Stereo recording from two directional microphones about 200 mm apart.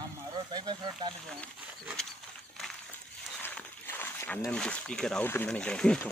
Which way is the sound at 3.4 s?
10° left (ahead or behind).